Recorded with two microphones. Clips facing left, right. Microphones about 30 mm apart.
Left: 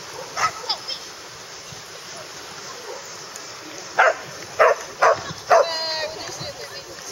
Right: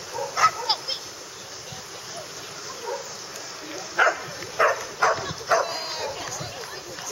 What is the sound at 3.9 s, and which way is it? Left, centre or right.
Bow-wow, centre.